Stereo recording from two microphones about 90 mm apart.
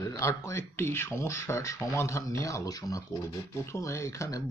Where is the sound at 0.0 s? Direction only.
35° left (ahead or behind).